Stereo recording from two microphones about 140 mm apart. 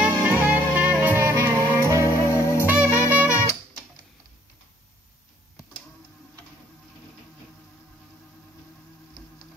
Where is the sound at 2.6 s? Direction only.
10° right (ahead or behind).